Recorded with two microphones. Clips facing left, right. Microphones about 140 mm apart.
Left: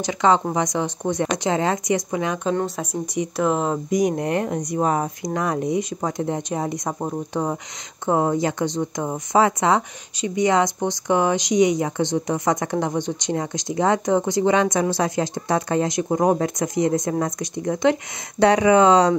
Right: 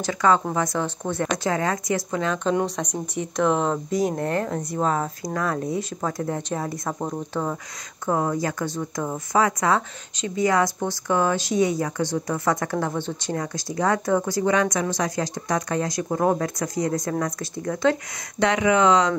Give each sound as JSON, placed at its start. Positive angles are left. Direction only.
{"t": 0.0, "sound": "speech", "side_deg": 20}
{"t": 3.7, "sound": "speech", "side_deg": 15}
{"t": 18.4, "sound": "speech", "side_deg": 35}